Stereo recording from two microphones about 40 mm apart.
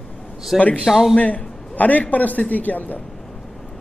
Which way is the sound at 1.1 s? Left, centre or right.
Left.